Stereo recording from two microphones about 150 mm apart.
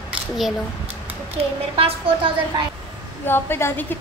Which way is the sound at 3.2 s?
15° left (ahead or behind).